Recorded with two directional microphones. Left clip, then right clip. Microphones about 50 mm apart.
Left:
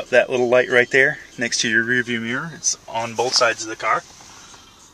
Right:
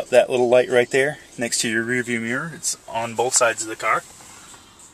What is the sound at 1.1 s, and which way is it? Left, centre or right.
Speech, right.